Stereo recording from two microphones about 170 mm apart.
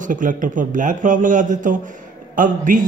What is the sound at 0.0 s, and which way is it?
A man's voice, 50° right (ahead or behind).